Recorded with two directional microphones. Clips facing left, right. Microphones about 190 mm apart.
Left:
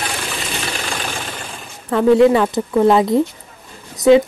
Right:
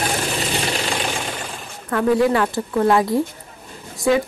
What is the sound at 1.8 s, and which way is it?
A woman's voice, 25° left (ahead or behind).